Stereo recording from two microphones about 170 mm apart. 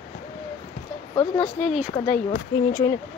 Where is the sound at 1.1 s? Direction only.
30° left (ahead or behind).